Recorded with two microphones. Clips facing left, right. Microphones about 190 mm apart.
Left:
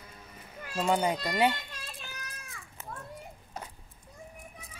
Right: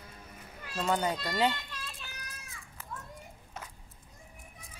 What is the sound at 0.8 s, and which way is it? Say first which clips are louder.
Speech: left 3 dB; 15° left (ahead or behind).